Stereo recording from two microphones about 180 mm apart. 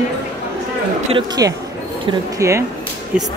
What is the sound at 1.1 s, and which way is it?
Speech, 20° right (ahead or behind).